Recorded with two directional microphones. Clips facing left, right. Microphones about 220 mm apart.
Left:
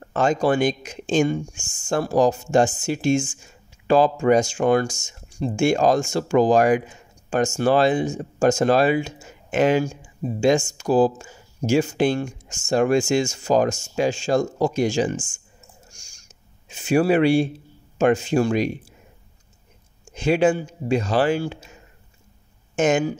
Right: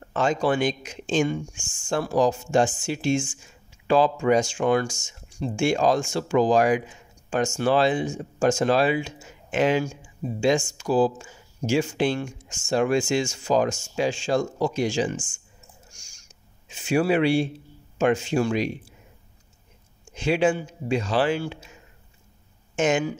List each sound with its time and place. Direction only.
0.1 s speech: 45° left (ahead or behind)
16.6 s speech: 45° left (ahead or behind)
20.2 s speech: 45° left (ahead or behind)
22.8 s speech: 45° left (ahead or behind)